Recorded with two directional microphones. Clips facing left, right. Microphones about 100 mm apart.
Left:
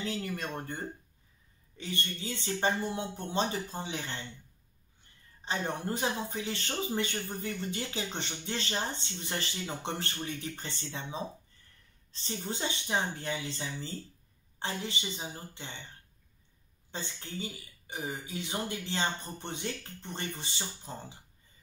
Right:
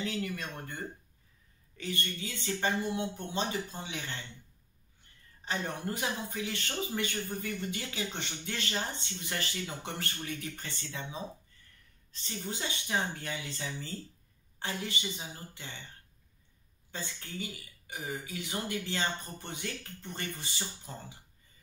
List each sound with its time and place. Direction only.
0.0 s a sound: 35° left (ahead or behind)
1.8 s speech: 30° left (ahead or behind)
5.4 s a man's voice: 25° left (ahead or behind)
16.9 s a man's voice: 25° left (ahead or behind)